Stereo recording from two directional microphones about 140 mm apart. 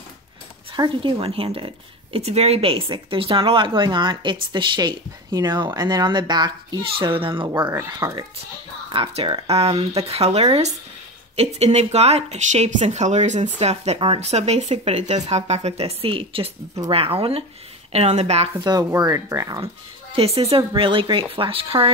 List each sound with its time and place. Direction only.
0.7 s a woman's voice: 35° right (ahead or behind)
7.4 s speech: 25° right (ahead or behind)
9.1 s speech: 45° right (ahead or behind)
18.6 s speech: 30° right (ahead or behind)
19.6 s a woman's voice: 45° right (ahead or behind)